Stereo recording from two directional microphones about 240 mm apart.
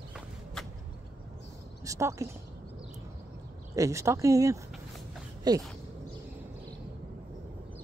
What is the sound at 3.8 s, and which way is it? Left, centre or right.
Speech, centre.